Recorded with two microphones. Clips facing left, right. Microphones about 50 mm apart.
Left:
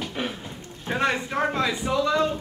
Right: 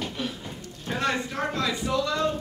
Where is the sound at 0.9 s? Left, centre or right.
Left.